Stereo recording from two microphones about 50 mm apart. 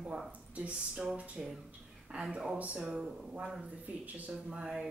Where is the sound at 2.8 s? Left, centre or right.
Centre.